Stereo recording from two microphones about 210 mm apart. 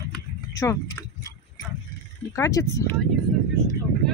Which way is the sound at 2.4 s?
15° left (ahead or behind).